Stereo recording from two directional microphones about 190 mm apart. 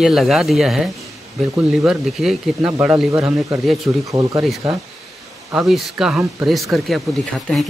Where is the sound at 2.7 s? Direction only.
15° right (ahead or behind).